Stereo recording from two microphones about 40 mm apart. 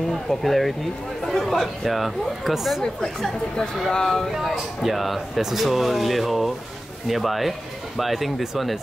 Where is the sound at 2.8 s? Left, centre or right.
Centre.